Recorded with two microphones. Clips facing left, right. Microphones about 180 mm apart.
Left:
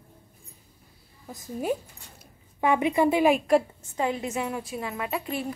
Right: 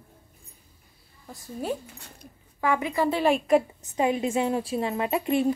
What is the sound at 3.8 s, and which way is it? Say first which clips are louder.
A woman's voice: right 4 dB; 20° right (ahead or behind).